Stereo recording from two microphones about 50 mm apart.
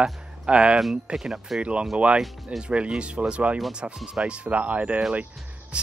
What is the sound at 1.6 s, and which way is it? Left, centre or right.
Speech, right.